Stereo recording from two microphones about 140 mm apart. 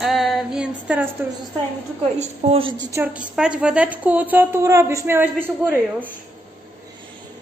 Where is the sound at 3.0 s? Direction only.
10° right (ahead or behind).